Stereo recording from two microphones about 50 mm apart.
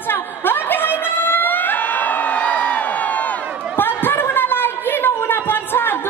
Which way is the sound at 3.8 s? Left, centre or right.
Left.